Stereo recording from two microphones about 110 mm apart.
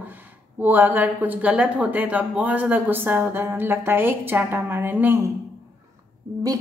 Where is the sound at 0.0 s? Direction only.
20° right (ahead or behind).